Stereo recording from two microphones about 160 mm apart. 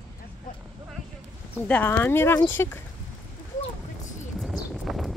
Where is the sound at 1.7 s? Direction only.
15° left (ahead or behind).